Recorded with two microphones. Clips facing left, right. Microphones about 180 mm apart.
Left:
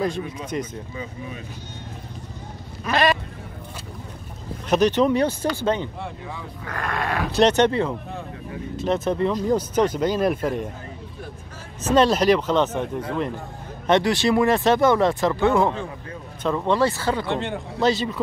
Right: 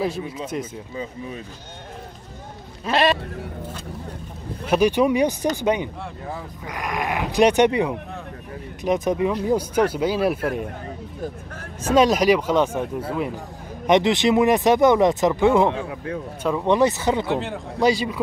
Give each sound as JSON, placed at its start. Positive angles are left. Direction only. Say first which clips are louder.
{"t": 0.5, "sound": "speech", "louder": "left 1 dB", "side_deg": 0}
{"t": 2.8, "sound": "speech", "louder": "right 1 dB", "side_deg": -25}
{"t": 4.6, "sound": "speech", "louder": "even", "side_deg": -10}
{"t": 11.8, "sound": "speech", "louder": "right 1 dB", "side_deg": -10}
{"t": 13.8, "sound": "speech", "louder": "right 2 dB", "side_deg": -15}
{"t": 17.3, "sound": "speech", "louder": "right 1 dB", "side_deg": -5}